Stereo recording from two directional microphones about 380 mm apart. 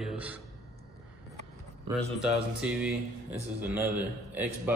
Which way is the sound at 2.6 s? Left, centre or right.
Centre.